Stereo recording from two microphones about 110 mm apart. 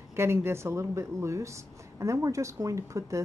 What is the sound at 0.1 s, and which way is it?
A woman's voice, 25° right (ahead or behind).